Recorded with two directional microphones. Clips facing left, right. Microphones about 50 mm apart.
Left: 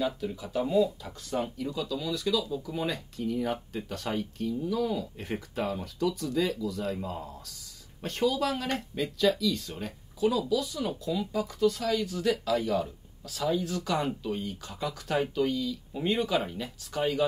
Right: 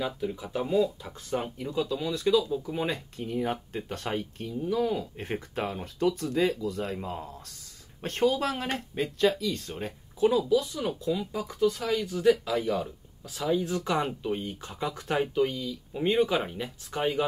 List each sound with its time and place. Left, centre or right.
0.0 s speech: centre